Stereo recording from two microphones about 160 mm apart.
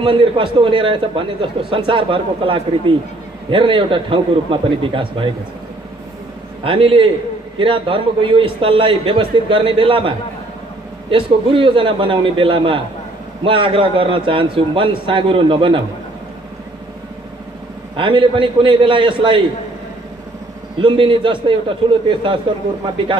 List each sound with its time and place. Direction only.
0.0 s a man's voice: 30° right (ahead or behind)
6.6 s a man's voice: 35° right (ahead or behind)
17.9 s a man's voice: 30° right (ahead or behind)
20.8 s a man's voice: 30° right (ahead or behind)